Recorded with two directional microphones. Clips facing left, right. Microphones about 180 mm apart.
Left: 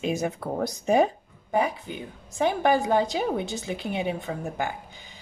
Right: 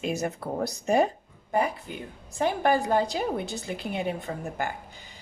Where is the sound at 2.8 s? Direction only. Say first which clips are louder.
Left 2 dB; centre (ahead or behind).